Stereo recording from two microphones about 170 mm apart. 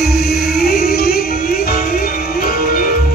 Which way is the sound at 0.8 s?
65° left (ahead or behind).